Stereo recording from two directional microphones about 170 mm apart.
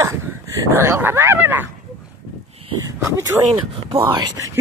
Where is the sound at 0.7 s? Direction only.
15° right (ahead or behind).